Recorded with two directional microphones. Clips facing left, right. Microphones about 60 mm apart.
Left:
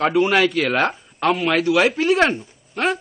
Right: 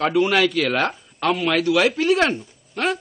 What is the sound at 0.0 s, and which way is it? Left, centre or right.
A man's voice, left.